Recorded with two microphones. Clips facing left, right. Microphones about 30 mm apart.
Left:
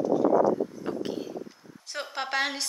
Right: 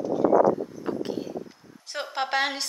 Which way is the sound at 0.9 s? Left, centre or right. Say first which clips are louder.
Right 2 dB; centre.